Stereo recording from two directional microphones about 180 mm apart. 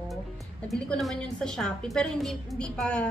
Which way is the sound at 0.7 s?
Centre (ahead or behind).